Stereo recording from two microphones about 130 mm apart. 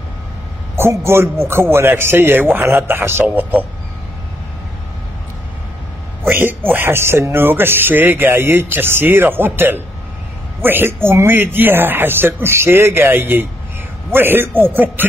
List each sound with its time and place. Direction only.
0.7 s a man's voice: 20° right (ahead or behind)
6.2 s speech: 15° right (ahead or behind)